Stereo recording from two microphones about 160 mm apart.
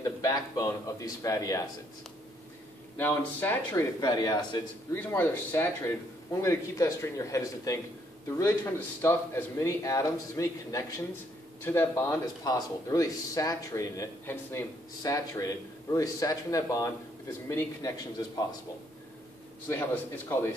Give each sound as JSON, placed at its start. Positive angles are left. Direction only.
{"t": 0.0, "sound": "speech", "side_deg": 20}
{"t": 3.0, "sound": "speech", "side_deg": 15}
{"t": 4.0, "sound": "speech", "side_deg": 25}
{"t": 4.9, "sound": "speech", "side_deg": 15}
{"t": 19.7, "sound": "speech", "side_deg": 15}